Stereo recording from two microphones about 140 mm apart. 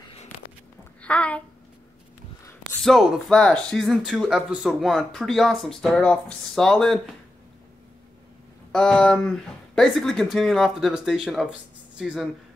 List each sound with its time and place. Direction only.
1.0 s a sound: 10° left (ahead or behind)
2.8 s speech: centre (ahead or behind)
8.7 s speech: 5° left (ahead or behind)